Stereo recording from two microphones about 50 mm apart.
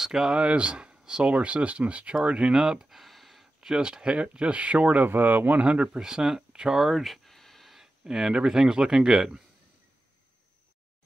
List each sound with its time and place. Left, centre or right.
0.0 s speech: centre
0.4 s speech: right
2.9 s a sound: centre
3.7 s speech: centre
5.0 s speech: right
5.9 s speech: centre